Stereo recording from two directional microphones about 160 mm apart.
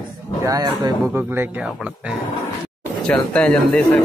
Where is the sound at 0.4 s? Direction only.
20° right (ahead or behind).